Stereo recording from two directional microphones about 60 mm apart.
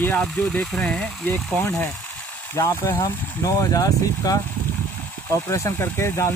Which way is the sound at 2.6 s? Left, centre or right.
Left.